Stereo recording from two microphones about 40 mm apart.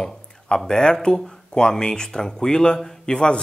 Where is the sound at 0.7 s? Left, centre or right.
Centre.